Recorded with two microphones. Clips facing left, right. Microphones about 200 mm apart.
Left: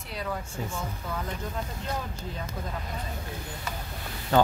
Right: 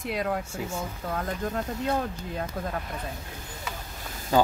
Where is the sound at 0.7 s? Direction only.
55° right (ahead or behind).